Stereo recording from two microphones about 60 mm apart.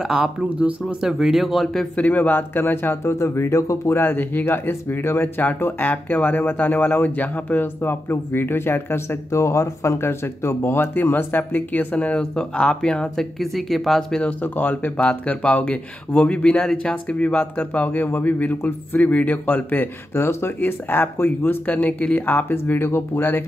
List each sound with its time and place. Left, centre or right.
0.0 s speech: centre
2.0 s speech: left
3.0 s speech: left
4.0 s speech: left
9.3 s speech: left; by 14.2 s centre
14.4 s speech: left
20.2 s speech: left
21.7 s speech: left